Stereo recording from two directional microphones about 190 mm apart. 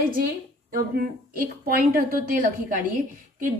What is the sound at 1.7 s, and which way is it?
A woman's voice, 50° right (ahead or behind).